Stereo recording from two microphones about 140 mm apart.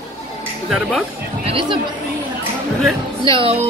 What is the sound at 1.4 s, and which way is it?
Speech, 40° right (ahead or behind).